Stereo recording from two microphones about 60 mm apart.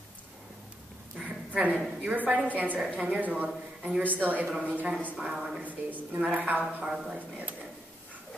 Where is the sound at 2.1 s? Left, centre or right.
Right.